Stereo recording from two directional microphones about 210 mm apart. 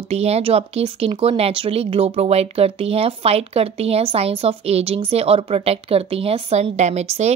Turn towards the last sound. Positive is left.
turn(degrees=-30)  # may be behind; listen again after turning